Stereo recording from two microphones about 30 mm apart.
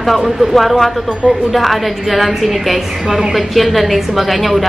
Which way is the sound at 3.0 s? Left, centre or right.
Centre.